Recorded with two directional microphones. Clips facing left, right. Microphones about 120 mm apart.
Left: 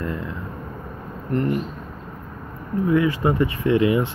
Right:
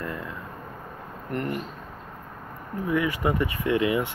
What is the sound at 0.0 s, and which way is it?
Vehicle, 25° left (ahead or behind).